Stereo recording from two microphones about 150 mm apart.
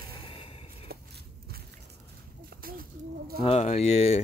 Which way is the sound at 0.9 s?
90° right.